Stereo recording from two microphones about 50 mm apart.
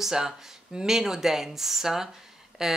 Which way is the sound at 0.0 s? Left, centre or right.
Centre.